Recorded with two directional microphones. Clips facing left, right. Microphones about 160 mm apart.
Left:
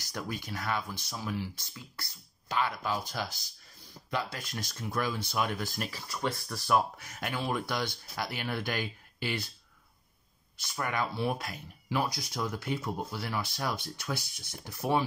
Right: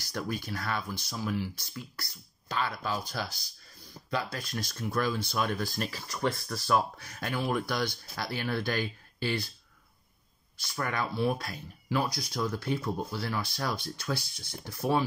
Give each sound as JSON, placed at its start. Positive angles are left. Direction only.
{"t": 0.0, "sound": "speech", "side_deg": 20}
{"t": 10.6, "sound": "speech", "side_deg": 20}